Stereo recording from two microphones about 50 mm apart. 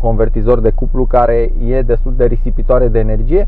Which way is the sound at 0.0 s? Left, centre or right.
Centre.